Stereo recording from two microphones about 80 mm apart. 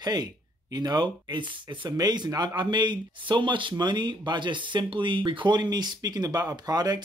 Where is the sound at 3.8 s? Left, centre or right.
Right.